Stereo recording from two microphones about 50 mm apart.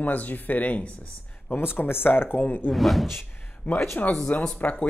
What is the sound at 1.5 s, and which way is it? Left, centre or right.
Speech, left.